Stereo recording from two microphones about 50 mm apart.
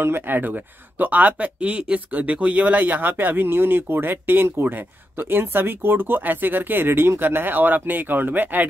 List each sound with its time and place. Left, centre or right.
0.0 s speech: right